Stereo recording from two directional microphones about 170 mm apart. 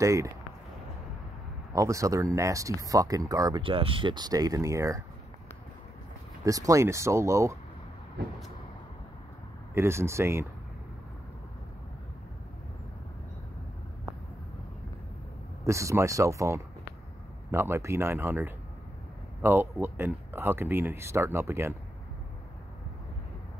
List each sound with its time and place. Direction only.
0.0 s speech: 20° right (ahead or behind)
1.7 s speech: 20° right (ahead or behind)
6.4 s speech: 20° right (ahead or behind)
9.8 s speech: 15° right (ahead or behind)
15.6 s speech: 15° right (ahead or behind)